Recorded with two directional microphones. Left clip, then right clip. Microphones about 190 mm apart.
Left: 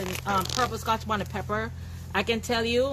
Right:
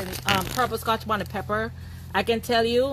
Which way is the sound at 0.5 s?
35° right (ahead or behind).